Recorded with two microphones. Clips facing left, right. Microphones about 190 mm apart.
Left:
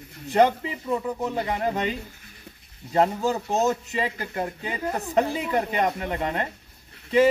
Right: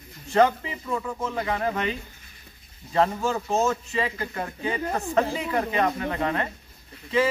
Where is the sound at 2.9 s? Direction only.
20° left (ahead or behind).